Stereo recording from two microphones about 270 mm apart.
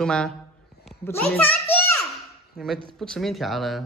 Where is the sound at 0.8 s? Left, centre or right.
Centre.